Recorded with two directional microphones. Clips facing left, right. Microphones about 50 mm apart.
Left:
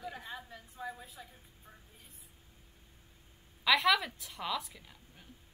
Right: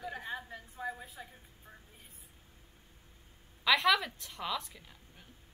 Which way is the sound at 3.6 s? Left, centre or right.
Centre.